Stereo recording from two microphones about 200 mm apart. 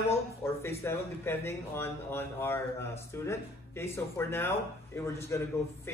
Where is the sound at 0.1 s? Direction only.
15° left (ahead or behind).